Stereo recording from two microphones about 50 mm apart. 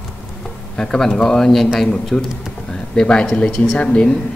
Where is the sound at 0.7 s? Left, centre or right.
Centre.